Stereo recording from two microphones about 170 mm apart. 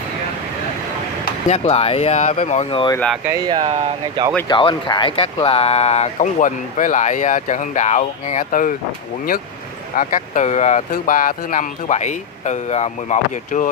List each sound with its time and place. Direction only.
1.5 s speech: 40° left (ahead or behind)
3.3 s speech: 25° right (ahead or behind)
3.6 s speech: 35° right (ahead or behind)
4.5 s speech: 30° left (ahead or behind); by 8.7 s 50° left (ahead or behind)
9.9 s speech: 50° left (ahead or behind)